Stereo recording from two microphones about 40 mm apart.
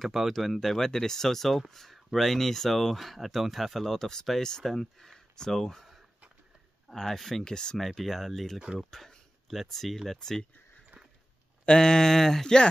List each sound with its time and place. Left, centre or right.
0.0 s speech: centre
3.8 s speech: centre
6.9 s speech: centre
7.8 s speech: centre
11.6 s speech: left